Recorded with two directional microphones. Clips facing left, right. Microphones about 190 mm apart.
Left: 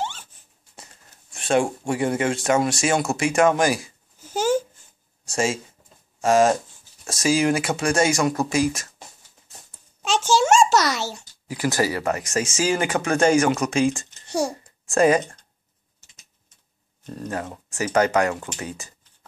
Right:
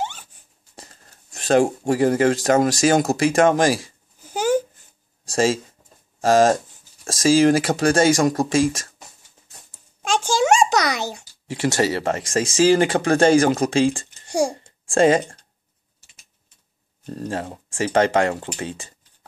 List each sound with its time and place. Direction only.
0.7 s speech: 40° right (ahead or behind)
4.3 s a sound: 15° right (ahead or behind)
6.2 s speech: 35° right (ahead or behind)
10.1 s a sound: 15° right (ahead or behind)
10.4 s a sound: 55° right (ahead or behind)
10.7 s babbling: 15° right (ahead or behind)
11.4 s speech: 25° right (ahead or behind)
14.2 s babbling: 15° right (ahead or behind)
14.5 s speech: 30° right (ahead or behind)
17.0 s speech: 35° right (ahead or behind)